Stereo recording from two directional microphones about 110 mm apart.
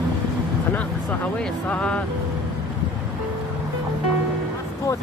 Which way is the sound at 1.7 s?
10° left (ahead or behind).